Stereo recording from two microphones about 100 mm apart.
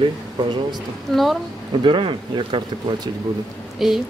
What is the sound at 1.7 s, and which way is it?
Speech, 55° right (ahead or behind).